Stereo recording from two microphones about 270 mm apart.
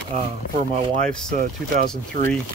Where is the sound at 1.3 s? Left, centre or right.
Right.